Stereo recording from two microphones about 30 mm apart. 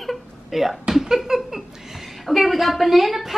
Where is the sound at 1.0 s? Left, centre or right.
Centre.